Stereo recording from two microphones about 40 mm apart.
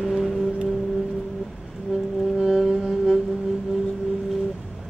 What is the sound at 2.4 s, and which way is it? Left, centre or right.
Music, centre.